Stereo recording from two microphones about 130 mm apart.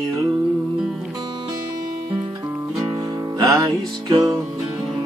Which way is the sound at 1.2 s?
40° right (ahead or behind).